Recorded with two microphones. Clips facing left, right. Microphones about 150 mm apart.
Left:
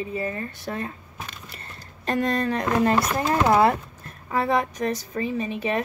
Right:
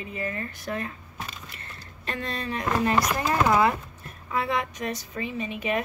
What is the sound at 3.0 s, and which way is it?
Speech, 25° left (ahead or behind).